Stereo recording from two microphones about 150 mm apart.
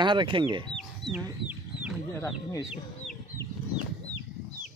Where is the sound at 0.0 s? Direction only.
30° right (ahead or behind).